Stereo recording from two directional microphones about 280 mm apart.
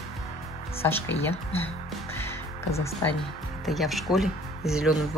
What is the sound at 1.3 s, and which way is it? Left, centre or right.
Speech, left.